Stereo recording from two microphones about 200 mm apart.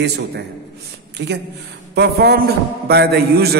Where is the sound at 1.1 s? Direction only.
60° right (ahead or behind).